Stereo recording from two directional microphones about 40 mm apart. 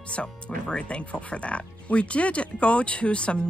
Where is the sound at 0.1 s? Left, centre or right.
Left.